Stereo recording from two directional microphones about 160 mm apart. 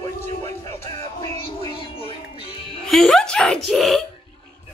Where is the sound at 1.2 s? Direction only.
35° left (ahead or behind).